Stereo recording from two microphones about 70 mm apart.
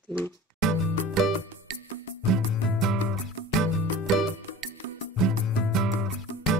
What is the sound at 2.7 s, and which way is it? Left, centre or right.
Music, centre.